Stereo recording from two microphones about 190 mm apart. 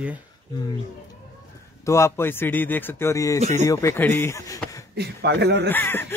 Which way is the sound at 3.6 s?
15° left (ahead or behind).